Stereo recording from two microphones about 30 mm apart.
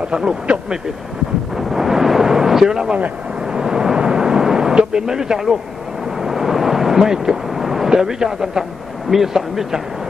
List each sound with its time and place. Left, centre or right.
0.1 s speech: right
1.5 s eruption: centre
2.2 s a sound: centre
6.1 s vehicle: centre
7.4 s a man's voice: centre